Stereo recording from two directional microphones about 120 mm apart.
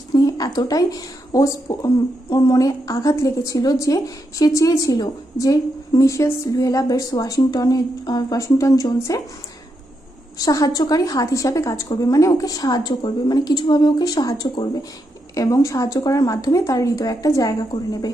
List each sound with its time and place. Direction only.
0.1 s speech: 30° left (ahead or behind)
10.4 s a woman's voice: 30° left (ahead or behind)